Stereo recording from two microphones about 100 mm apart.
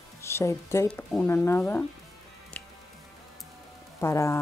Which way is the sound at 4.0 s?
25° left (ahead or behind).